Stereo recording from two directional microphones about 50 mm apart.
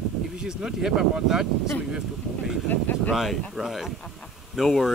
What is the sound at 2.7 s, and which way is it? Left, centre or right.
Speech, left.